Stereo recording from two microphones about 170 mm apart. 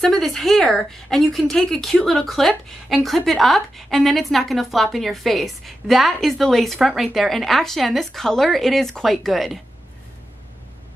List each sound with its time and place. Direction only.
0.0 s speech: centre (ahead or behind)